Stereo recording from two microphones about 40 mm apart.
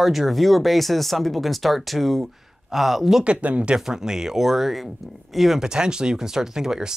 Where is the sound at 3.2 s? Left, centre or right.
Right.